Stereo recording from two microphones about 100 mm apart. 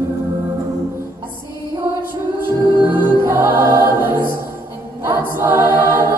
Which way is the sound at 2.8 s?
20° right (ahead or behind).